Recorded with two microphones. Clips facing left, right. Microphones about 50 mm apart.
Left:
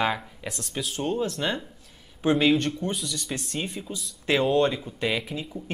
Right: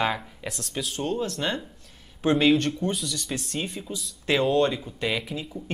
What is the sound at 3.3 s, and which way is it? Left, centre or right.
Speech, centre.